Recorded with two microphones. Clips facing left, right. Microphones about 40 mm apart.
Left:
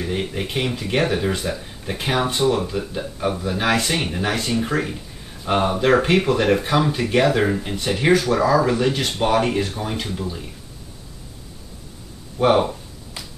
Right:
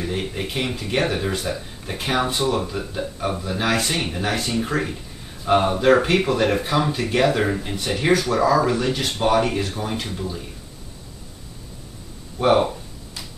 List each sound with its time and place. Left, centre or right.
0.0 s speech: centre
7.2 s speech: centre
12.4 s speech: centre